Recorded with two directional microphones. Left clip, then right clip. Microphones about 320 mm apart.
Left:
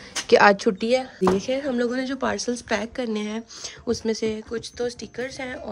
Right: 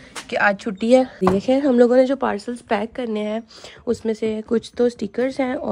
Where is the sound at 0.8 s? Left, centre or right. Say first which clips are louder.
Right 8 dB; centre.